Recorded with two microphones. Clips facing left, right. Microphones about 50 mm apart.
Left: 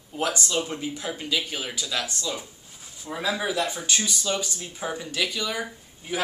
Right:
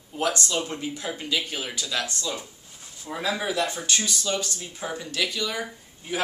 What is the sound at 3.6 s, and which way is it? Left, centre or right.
Speech, centre.